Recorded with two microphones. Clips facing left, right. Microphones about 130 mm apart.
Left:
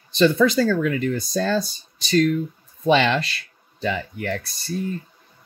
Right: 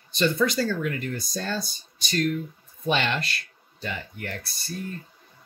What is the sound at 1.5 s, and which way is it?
Speech, 90° left.